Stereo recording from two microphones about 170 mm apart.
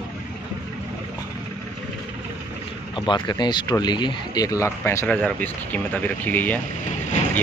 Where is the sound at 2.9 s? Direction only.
25° left (ahead or behind).